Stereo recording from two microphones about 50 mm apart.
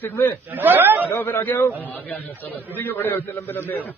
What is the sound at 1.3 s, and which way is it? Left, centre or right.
Speech, left.